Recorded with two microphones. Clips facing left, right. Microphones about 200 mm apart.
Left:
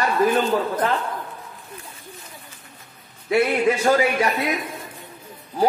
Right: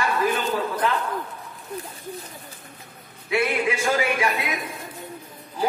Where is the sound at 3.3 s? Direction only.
45° left (ahead or behind).